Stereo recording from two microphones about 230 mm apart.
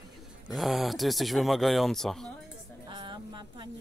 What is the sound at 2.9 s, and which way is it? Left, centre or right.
Music, right.